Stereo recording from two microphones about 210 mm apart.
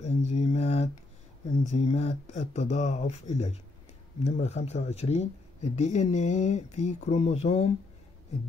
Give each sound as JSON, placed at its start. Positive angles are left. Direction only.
{"t": 0.0, "sound": "mantra", "side_deg": 30}
{"t": 1.6, "sound": "speech", "side_deg": 30}